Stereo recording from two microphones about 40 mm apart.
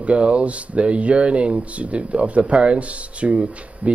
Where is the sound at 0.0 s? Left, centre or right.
Right.